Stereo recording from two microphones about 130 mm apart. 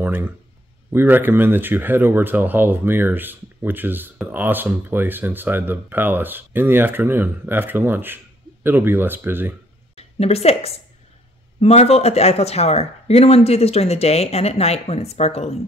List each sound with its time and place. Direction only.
0.0 s a man's voice: 15° right (ahead or behind)
9.9 s a woman's voice: 50° left (ahead or behind)